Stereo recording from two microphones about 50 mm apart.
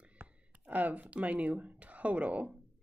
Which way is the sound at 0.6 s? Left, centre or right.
Right.